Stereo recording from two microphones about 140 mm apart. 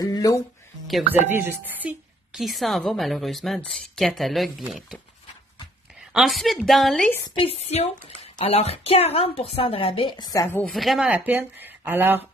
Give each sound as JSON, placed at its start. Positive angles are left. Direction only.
{"t": 0.0, "sound": "speech", "side_deg": 25}
{"t": 1.3, "sound": "a woman's voice", "side_deg": -10}
{"t": 6.1, "sound": "a woman's voice", "side_deg": 0}
{"t": 7.2, "sound": "a woman's voice", "side_deg": 40}
{"t": 10.7, "sound": "speech", "side_deg": 0}